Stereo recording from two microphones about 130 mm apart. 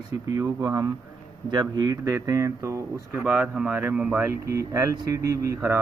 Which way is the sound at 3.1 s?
10° right (ahead or behind).